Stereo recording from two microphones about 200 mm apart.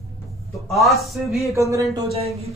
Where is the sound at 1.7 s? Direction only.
15° right (ahead or behind).